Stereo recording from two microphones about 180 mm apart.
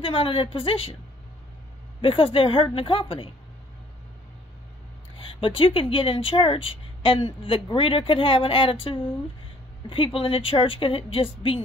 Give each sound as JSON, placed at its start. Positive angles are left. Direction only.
{"t": 0.0, "sound": "a woman's voice", "side_deg": 30}
{"t": 2.0, "sound": "a woman's voice", "side_deg": 30}
{"t": 5.1, "sound": "a sound", "side_deg": 30}
{"t": 5.6, "sound": "a woman's voice", "side_deg": 30}
{"t": 9.8, "sound": "a woman's voice", "side_deg": 30}